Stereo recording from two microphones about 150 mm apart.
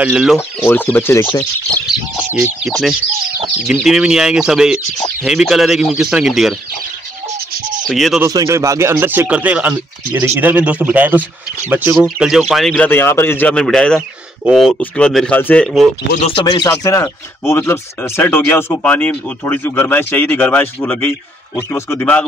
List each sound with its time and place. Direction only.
0.0 s speech: 5° right (ahead or behind)
0.7 s speech: 15° left (ahead or behind)
2.6 s speech: centre (ahead or behind)
7.9 s speech: centre (ahead or behind)
8.2 s speech: 20° right (ahead or behind); by 15.9 s 5° left (ahead or behind)
16.3 s speech: 30° left (ahead or behind); by 22.2 s 10° left (ahead or behind)